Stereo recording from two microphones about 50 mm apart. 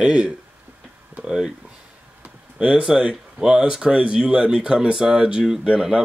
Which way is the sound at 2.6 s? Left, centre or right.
Right.